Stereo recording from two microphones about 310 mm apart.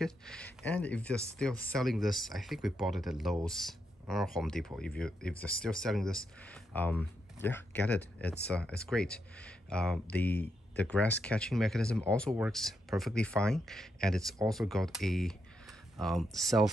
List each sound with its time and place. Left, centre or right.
0.0 s speech: centre